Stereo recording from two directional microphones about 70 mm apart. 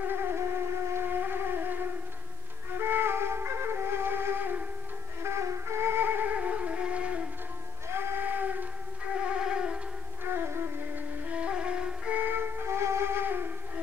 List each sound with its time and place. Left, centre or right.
0.1 s wind instrument: right
0.9 s a sound: right
2.8 s flute: right
5.2 s music: right; by 7.2 s centre
7.9 s a sound: right
9.2 s music: centre
10.3 s music: right
11.2 s music: centre
12.2 s flute: right